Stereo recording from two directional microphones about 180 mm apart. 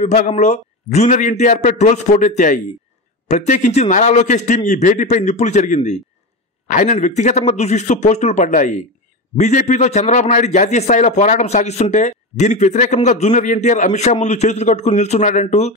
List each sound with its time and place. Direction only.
0.0 s a man's voice: 40° left (ahead or behind)